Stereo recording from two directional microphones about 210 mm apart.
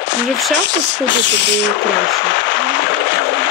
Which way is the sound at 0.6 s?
55° left (ahead or behind).